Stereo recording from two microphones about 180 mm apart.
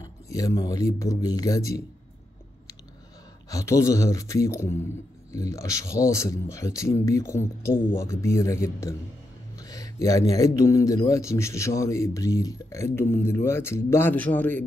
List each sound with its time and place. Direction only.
0.0 s speech: 20° left (ahead or behind)
3.4 s a man's voice: 20° left (ahead or behind)